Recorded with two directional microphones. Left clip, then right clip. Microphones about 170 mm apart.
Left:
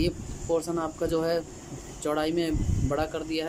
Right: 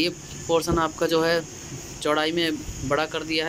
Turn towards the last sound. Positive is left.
turn(degrees=10)  # may be behind; listen again after turning